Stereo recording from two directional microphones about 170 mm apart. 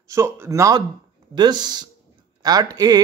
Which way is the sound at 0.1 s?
15° right (ahead or behind).